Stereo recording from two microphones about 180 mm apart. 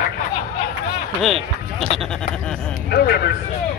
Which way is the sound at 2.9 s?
65° left (ahead or behind).